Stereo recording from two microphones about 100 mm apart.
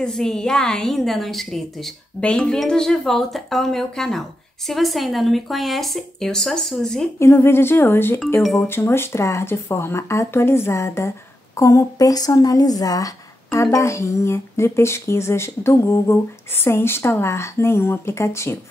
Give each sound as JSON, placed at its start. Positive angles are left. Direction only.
{"t": 0.0, "sound": "a woman's voice", "side_deg": 5}
{"t": 7.2, "sound": "speech", "side_deg": 25}
{"t": 8.4, "sound": "a woman's voice", "side_deg": 0}
{"t": 8.6, "sound": "speech", "side_deg": 25}